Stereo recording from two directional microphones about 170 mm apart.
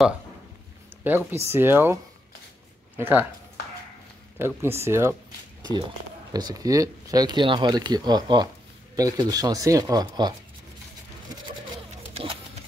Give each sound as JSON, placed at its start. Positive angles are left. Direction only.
{"t": 1.0, "sound": "speech", "side_deg": -15}
{"t": 3.0, "sound": "speech", "side_deg": -10}
{"t": 4.4, "sound": "speech", "side_deg": -15}
{"t": 6.3, "sound": "speech", "side_deg": -20}
{"t": 12.0, "sound": "a sound", "side_deg": -35}